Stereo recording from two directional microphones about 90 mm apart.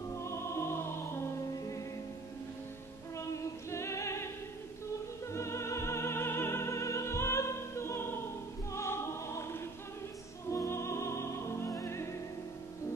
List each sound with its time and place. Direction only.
0.1 s music: 30° left (ahead or behind)
3.7 s music: 30° left (ahead or behind)
5.3 s music: 30° left (ahead or behind)
8.7 s opera: 30° left (ahead or behind)
10.5 s music: 30° left (ahead or behind)